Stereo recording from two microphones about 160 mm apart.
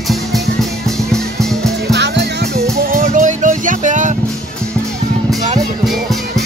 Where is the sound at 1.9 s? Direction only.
90° right; by 4.2 s 50° right (ahead or behind).